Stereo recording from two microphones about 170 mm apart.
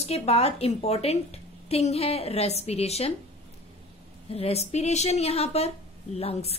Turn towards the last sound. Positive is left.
turn(degrees=35)  # may be behind; listen again after turning